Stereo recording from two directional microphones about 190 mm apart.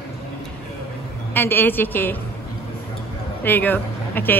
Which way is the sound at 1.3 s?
10° left (ahead or behind).